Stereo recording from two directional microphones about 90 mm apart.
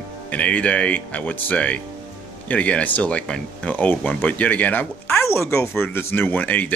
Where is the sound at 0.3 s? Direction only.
15° left (ahead or behind).